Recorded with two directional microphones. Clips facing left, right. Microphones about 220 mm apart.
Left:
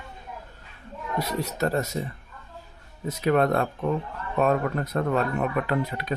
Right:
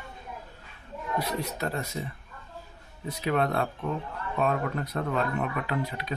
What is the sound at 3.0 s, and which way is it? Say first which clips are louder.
Speech: left 5 dB; 45° left (ahead or behind).